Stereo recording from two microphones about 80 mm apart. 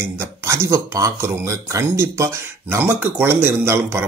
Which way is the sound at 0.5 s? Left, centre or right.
Right.